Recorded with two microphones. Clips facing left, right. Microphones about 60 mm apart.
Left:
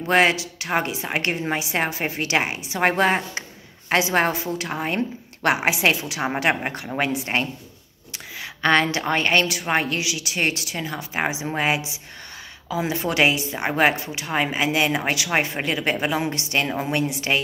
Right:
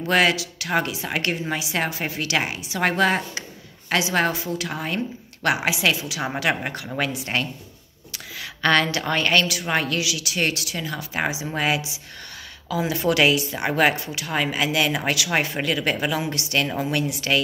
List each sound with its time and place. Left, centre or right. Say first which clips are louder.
0.0 s a woman's voice: left 1 dB; left
12.9 s speech: right 2 dB; left